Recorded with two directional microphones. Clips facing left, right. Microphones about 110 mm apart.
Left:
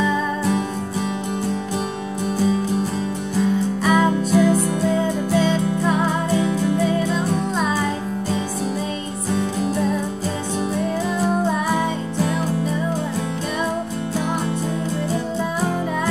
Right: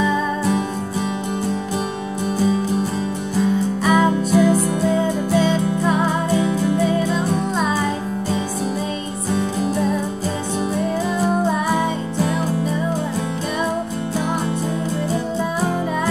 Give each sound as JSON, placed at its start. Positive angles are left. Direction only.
{"t": 0.0, "sound": "music", "side_deg": -20}
{"t": 3.8, "sound": "music", "side_deg": -15}
{"t": 11.1, "sound": "music", "side_deg": -15}
{"t": 15.6, "sound": "music", "side_deg": -15}